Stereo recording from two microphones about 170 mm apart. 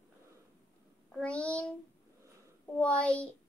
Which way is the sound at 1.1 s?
5° left (ahead or behind).